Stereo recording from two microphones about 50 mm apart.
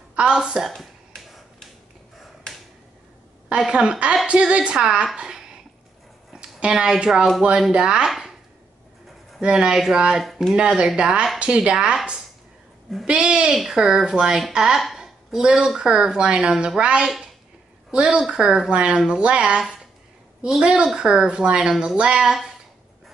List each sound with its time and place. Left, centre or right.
0.3 s a woman's voice: centre
0.7 s a sound: centre
3.5 s a woman's voice: centre
6.6 s a woman's voice: centre
9.4 s a woman's voice: centre
10.2 s speech: centre
10.5 s a woman's voice: centre
13.0 s a woman's voice: centre
15.0 s a sound: centre
15.8 s a woman's voice: centre
17.0 s a woman's voice: centre
17.9 s a woman's voice: right
20.4 s a woman's voice: centre